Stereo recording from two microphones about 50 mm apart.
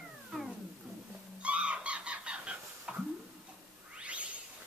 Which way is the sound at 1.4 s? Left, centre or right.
Right.